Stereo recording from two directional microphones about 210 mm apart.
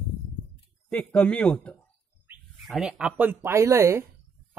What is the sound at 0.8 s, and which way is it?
Speech, 5° left (ahead or behind).